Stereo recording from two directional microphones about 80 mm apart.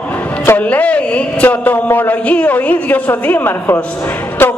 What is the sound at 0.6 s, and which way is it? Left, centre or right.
A man's voice, centre.